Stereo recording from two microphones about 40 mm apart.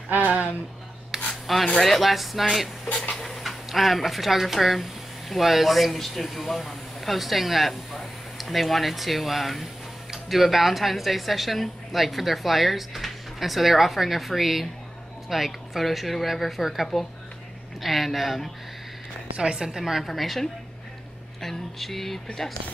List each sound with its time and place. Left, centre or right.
0.1 s speech: right
1.1 s rub: centre
1.8 s speech: centre
3.2 s a sound: centre
3.6 s speech: centre
19.3 s a woman's voice: right
19.8 s speech: centre